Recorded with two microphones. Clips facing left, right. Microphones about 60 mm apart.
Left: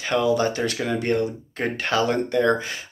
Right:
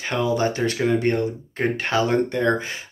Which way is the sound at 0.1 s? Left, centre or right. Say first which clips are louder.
Left 1 dB; right.